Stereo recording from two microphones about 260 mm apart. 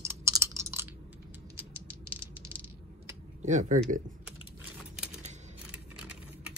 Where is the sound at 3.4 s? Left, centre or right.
Right.